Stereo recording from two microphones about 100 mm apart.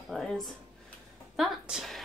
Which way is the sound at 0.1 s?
Centre (ahead or behind).